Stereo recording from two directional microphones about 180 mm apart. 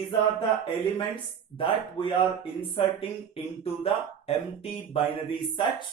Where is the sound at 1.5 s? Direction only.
30° left (ahead or behind).